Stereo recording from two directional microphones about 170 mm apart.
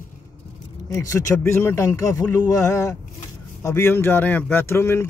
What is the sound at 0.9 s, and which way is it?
Speech, 15° left (ahead or behind).